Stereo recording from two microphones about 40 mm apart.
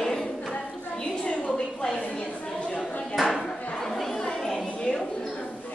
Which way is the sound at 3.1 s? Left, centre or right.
Centre.